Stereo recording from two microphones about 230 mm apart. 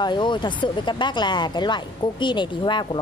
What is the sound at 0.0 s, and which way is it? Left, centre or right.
A woman's voice, centre.